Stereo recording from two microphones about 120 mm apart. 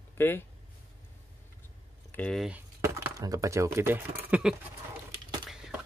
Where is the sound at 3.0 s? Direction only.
30° right (ahead or behind); by 4.5 s 10° right (ahead or behind).